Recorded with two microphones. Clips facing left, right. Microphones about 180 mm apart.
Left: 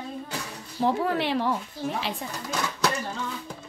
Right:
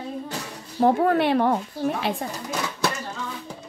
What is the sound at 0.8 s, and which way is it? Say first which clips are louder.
Speech: right 6 dB; 50° right (ahead or behind).